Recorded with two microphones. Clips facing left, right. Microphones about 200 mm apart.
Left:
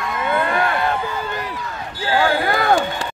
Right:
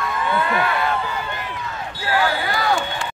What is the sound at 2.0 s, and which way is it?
Basketball bounce, 30° left (ahead or behind).